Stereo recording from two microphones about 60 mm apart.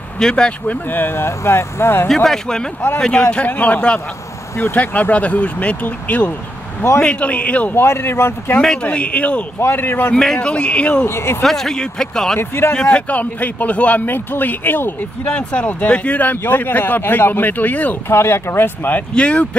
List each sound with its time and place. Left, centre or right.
0.2 s speech: centre
0.7 s speech: left
2.2 s a man's voice: centre
7.7 s speech: left
8.8 s a man's voice: left
9.6 s speech: left
10.1 s speech: centre
11.1 s speech: left
11.4 s speech: centre
12.4 s speech: left
12.7 s a man's voice: centre; by 15.0 s left
15.2 s speech: left
18.1 s speech: left
19.1 s a man's voice: centre